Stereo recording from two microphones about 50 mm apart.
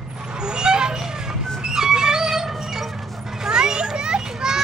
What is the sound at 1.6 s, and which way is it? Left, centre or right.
Music, centre.